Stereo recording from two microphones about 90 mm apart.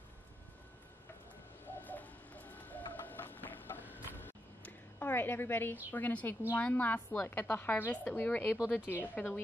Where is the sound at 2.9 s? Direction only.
20° left (ahead or behind).